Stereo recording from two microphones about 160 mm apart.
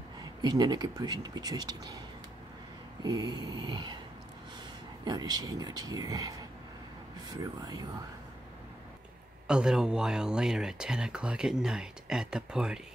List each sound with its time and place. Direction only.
0.4 s speech: 25° right (ahead or behind)
3.0 s speech: 25° right (ahead or behind)
5.0 s speech: 25° right (ahead or behind)
9.5 s speech: 5° right (ahead or behind)